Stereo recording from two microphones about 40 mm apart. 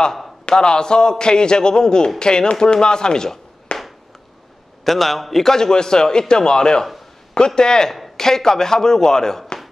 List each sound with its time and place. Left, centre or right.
0.5 s a man's voice: left
3.7 s a sound: left
4.8 s a man's voice: centre